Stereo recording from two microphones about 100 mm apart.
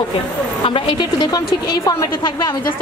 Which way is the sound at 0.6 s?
55° left (ahead or behind).